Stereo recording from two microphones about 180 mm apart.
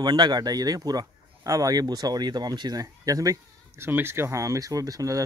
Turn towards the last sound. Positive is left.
turn(degrees=-20)  # may be behind; listen again after turning